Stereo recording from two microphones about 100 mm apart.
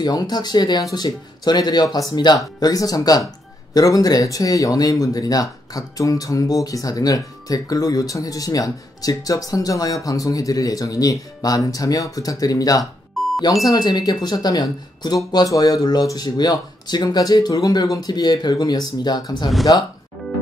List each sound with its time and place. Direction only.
0.0 s speech: 45° left (ahead or behind)
13.2 s music: centre (ahead or behind)
13.7 s speech: 45° left (ahead or behind)